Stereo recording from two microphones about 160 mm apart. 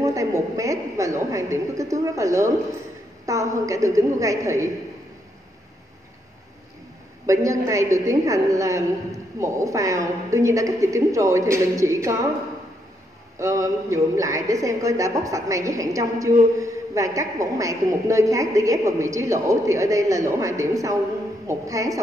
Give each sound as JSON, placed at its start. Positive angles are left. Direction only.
{"t": 0.0, "sound": "a woman's voice", "side_deg": -20}
{"t": 7.2, "sound": "a woman's voice", "side_deg": -20}
{"t": 13.4, "sound": "a woman's voice", "side_deg": -20}